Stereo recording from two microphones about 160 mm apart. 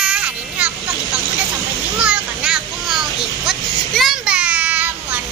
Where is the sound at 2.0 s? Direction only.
5° right (ahead or behind).